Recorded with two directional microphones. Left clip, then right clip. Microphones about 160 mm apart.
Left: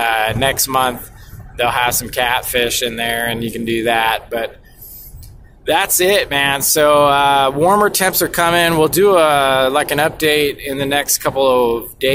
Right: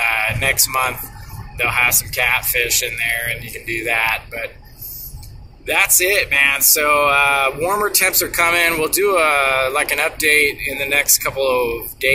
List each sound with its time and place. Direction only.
0.0 s speech: 55° left (ahead or behind)
5.7 s speech: 55° left (ahead or behind)